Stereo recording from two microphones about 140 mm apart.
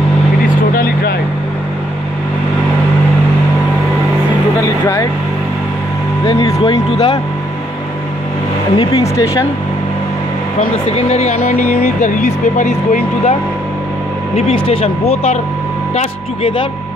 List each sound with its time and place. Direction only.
4.6 s music: 20° left (ahead or behind)
6.2 s speech: 25° left (ahead or behind)
8.7 s speech: 25° left (ahead or behind)
10.6 s speech: 45° left (ahead or behind)
11.8 s speech: 65° left (ahead or behind)
14.3 s speech: 40° left (ahead or behind)